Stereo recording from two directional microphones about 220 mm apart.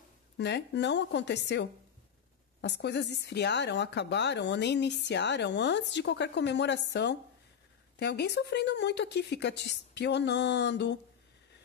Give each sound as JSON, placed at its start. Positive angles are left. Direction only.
{"t": 0.4, "sound": "a woman's voice", "side_deg": 50}